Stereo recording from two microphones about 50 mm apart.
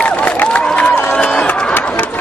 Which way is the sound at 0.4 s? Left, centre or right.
Left.